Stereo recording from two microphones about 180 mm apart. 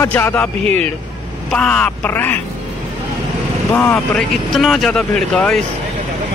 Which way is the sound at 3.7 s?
15° left (ahead or behind).